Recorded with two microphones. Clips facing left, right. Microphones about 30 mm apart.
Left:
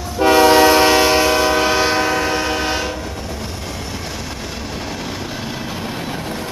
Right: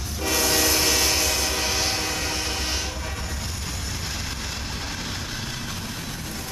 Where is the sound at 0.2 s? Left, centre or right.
Left.